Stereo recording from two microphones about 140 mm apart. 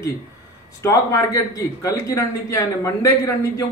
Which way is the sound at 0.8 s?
20° left (ahead or behind).